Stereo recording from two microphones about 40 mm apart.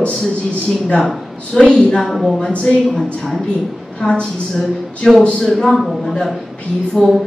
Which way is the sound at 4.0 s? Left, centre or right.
Left.